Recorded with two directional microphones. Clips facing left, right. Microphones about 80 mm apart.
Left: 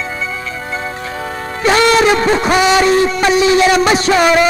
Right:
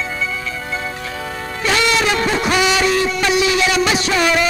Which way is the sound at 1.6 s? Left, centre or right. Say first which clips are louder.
Left 7 dB; left.